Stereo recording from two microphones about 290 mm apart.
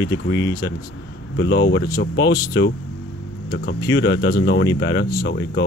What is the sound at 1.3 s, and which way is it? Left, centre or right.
Speech, left.